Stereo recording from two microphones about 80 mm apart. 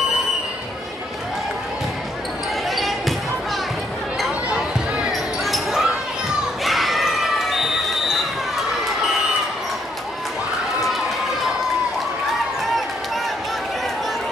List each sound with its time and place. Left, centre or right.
2.7 s a sound: centre
4.6 s basketball bounce: centre
6.6 s crowd: centre